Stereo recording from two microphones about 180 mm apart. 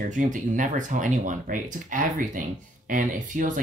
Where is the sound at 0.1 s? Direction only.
45° right (ahead or behind).